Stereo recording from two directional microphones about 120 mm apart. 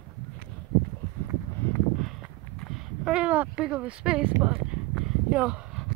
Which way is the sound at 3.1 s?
10° right (ahead or behind).